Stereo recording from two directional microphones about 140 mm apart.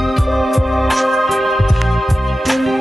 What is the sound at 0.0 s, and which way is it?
Music, centre (ahead or behind).